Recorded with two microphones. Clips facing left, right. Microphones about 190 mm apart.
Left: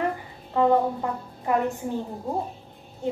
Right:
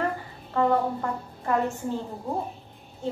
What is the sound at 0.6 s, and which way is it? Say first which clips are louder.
A woman's voice: left 3 dB; 15° left (ahead or behind).